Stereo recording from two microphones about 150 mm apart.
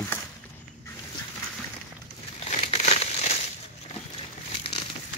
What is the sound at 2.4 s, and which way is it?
Crumpling, 45° left (ahead or behind).